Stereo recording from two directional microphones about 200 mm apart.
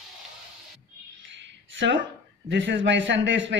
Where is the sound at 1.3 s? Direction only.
65° right (ahead or behind).